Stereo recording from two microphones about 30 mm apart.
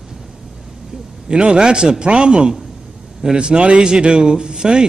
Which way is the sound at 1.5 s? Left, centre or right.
Right.